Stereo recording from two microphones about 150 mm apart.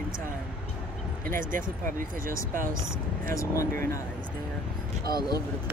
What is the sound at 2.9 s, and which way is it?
Speech, 20° left (ahead or behind).